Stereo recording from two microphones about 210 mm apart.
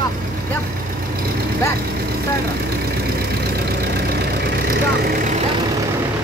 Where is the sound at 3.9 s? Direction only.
50° right (ahead or behind).